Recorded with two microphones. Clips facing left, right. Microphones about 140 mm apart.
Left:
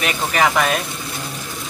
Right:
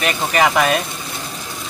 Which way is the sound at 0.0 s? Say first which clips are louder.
Right 2 dB; 5° right (ahead or behind).